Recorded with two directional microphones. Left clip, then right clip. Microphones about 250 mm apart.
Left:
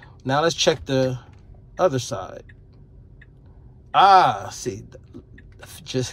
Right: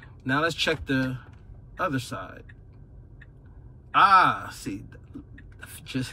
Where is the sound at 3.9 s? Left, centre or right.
Centre.